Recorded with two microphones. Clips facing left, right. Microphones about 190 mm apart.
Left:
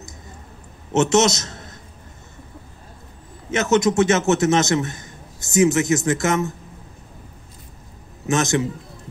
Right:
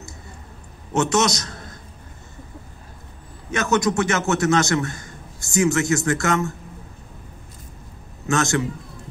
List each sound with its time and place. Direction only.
0.9 s a man's voice: 25° left (ahead or behind)
3.4 s a man's voice: 20° left (ahead or behind)
8.3 s a man's voice: 20° left (ahead or behind)